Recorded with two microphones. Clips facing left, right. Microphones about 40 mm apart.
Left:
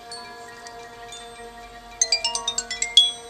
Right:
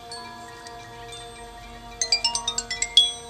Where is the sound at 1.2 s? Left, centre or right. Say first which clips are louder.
Left 1 dB; centre.